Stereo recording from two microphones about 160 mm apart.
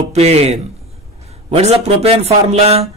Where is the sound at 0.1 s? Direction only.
40° right (ahead or behind).